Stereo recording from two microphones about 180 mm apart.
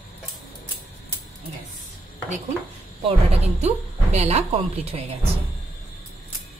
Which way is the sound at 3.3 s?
35° right (ahead or behind).